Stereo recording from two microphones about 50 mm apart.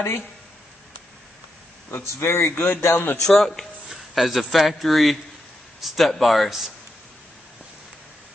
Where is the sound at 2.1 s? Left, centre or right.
Left.